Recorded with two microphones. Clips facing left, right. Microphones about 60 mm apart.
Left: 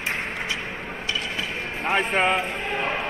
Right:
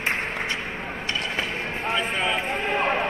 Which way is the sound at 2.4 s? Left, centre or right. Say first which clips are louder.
Right 2 dB; right.